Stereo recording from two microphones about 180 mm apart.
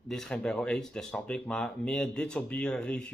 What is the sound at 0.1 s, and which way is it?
Speech, 5° left (ahead or behind).